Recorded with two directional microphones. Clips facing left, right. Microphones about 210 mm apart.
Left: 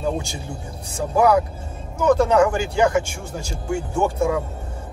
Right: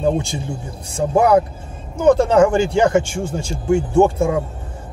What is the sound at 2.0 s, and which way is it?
Speech, 25° right (ahead or behind).